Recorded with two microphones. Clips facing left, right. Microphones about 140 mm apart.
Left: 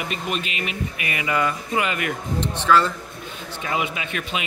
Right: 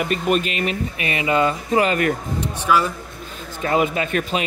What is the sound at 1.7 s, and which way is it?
Speech, 40° right (ahead or behind).